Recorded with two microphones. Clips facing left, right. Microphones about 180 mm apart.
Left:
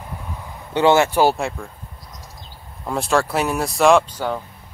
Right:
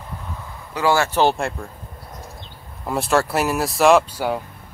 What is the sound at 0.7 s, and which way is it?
Speech, 20° left (ahead or behind).